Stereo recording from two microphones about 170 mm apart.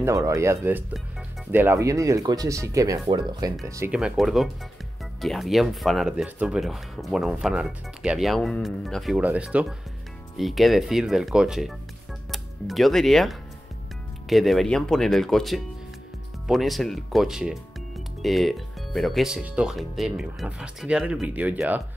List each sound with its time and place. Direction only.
0.0 s speech: 20° right (ahead or behind)
3.9 s speech: 5° right (ahead or behind)